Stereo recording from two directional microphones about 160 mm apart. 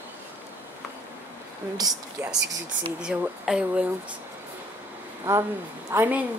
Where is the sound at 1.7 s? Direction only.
25° right (ahead or behind).